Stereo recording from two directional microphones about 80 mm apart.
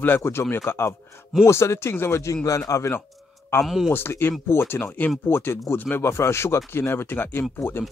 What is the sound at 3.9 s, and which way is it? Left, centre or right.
Speech, left.